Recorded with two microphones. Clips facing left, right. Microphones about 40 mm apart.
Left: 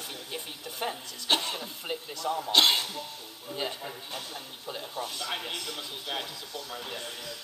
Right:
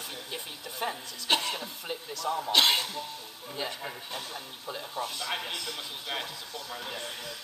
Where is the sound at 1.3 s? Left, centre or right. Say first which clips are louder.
Right 1 dB; right.